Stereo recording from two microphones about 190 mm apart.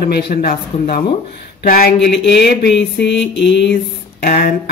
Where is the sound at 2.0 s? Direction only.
65° left (ahead or behind).